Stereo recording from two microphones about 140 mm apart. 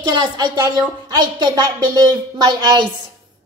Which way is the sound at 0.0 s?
30° right (ahead or behind).